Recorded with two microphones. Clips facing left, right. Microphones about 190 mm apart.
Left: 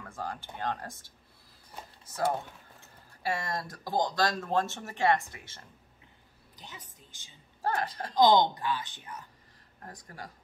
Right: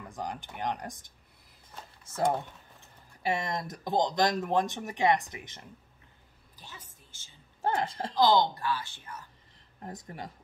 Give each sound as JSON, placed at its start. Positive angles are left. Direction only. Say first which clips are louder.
{"t": 0.0, "sound": "speech", "louder": "right 1 dB", "side_deg": -15}
{"t": 3.2, "sound": "speech", "louder": "right 2 dB", "side_deg": -20}
{"t": 6.5, "sound": "a woman's voice", "louder": "left 2 dB", "side_deg": 20}
{"t": 7.6, "sound": "speech", "louder": "right 2 dB", "side_deg": -25}
{"t": 8.1, "sound": "speech", "louder": "left 2 dB", "side_deg": 15}
{"t": 9.8, "sound": "speech", "louder": "right 4 dB", "side_deg": -20}